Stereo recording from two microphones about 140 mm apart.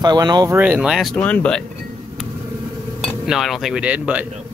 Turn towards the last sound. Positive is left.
turn(degrees=-10)  # may be behind; listen again after turning